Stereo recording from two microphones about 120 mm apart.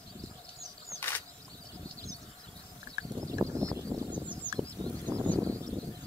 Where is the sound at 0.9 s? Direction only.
15° left (ahead or behind).